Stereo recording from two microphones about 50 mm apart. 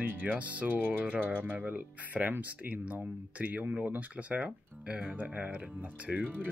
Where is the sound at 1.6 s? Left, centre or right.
Right.